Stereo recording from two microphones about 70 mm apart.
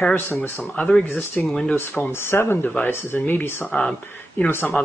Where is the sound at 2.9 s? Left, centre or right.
Left.